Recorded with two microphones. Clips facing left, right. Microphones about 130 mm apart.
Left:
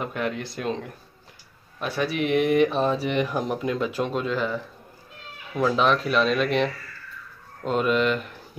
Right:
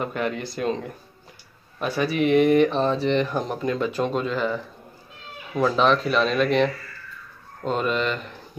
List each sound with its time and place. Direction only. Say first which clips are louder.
0.0 s speech: right 2 dB; centre (ahead or behind)
5.6 s speech: right 2 dB; 5° left (ahead or behind)